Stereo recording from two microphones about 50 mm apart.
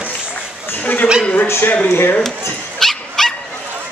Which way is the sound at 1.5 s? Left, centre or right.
Left.